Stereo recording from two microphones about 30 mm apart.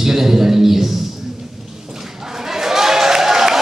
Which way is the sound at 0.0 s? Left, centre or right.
Centre.